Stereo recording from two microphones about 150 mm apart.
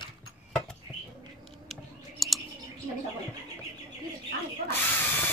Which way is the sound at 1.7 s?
Centre (ahead or behind).